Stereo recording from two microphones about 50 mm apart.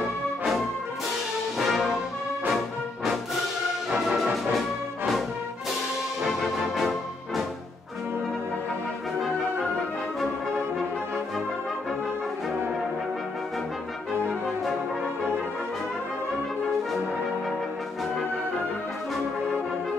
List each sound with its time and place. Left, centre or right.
1.6 s brass instrument: centre
6.2 s music: centre